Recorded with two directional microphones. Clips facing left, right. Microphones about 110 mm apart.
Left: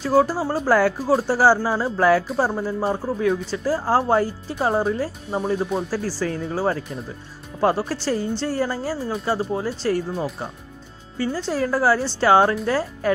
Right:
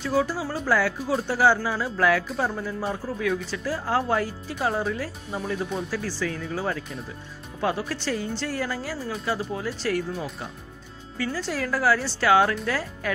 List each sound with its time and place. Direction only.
0.0 s speech: 45° left (ahead or behind)